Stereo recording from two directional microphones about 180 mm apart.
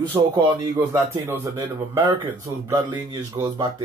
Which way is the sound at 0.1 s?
25° right (ahead or behind).